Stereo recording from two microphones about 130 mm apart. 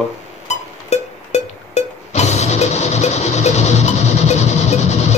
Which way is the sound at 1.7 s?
60° left (ahead or behind).